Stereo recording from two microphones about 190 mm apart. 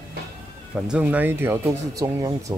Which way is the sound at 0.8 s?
5° right (ahead or behind).